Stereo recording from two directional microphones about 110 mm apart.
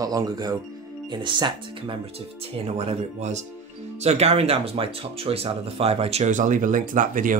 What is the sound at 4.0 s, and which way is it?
Speech, 75° right (ahead or behind).